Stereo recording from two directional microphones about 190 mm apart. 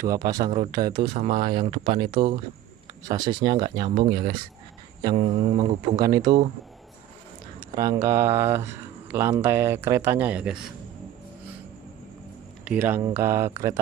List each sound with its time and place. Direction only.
0.0 s speech: 20° right (ahead or behind)
1.1 s a sound: 40° right (ahead or behind)
1.6 s speech: 25° right (ahead or behind)
5.0 s a sound: 30° right (ahead or behind)
5.9 s speech: 20° right (ahead or behind)
7.7 s speech: 20° right (ahead or behind)
12.6 s speech: 10° right (ahead or behind)